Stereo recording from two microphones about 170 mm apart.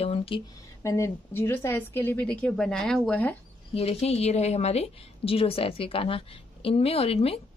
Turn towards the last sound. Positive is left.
turn(degrees=35)  # may be behind; listen again after turning